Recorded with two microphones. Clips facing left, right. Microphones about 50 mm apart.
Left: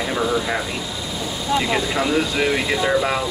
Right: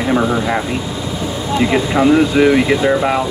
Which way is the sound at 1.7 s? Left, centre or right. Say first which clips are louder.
Right 8 dB; centre.